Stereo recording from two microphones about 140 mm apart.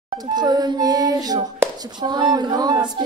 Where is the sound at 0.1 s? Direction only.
30° right (ahead or behind).